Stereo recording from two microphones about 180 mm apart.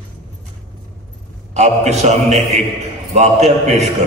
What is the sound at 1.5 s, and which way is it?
A man's voice, 40° right (ahead or behind).